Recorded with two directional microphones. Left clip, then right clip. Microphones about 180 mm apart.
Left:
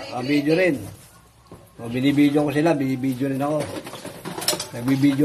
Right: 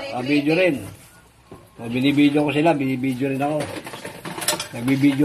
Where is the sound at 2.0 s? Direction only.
40° left (ahead or behind).